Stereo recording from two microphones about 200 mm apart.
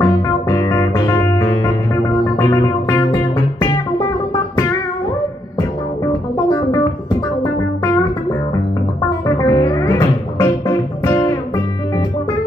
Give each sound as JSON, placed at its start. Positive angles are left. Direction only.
{"t": 0.0, "sound": "music", "side_deg": 15}
{"t": 6.3, "sound": "music", "side_deg": 20}
{"t": 9.4, "sound": "music", "side_deg": 20}